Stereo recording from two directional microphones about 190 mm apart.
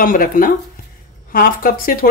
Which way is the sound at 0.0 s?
45° left (ahead or behind).